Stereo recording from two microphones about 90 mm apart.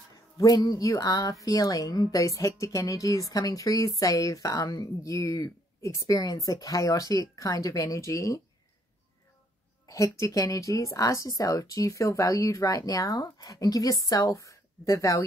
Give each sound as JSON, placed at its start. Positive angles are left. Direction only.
{"t": 0.4, "sound": "speech", "side_deg": 45}
{"t": 9.8, "sound": "speech", "side_deg": 35}